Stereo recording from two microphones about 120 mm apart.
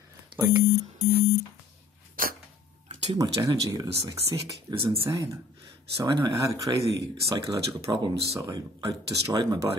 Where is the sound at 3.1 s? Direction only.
30° right (ahead or behind).